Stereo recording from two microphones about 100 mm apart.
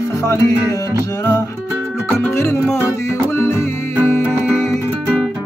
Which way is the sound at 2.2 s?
25° left (ahead or behind).